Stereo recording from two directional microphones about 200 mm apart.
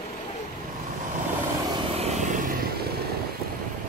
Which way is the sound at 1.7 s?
30° right (ahead or behind).